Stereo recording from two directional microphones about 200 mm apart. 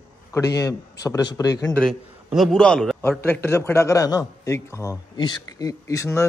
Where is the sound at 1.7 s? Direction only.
Centre (ahead or behind).